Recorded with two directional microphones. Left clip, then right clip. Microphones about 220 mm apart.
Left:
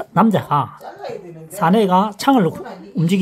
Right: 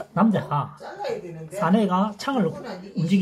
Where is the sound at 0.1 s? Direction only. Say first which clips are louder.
Left 7 dB; 55° left (ahead or behind).